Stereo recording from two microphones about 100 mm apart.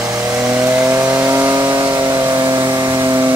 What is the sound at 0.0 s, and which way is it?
Vehicle, 30° right (ahead or behind).